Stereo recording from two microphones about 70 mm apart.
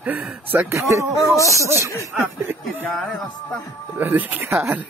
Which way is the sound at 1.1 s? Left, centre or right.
Left.